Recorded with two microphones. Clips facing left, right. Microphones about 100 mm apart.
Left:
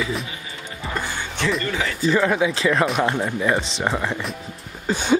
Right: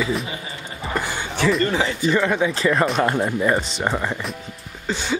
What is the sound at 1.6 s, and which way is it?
Speech, 30° right (ahead or behind).